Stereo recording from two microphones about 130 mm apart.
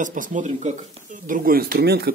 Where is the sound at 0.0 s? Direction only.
85° right.